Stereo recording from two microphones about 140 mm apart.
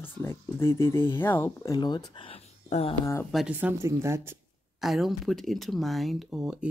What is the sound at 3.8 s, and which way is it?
Speech, 20° right (ahead or behind).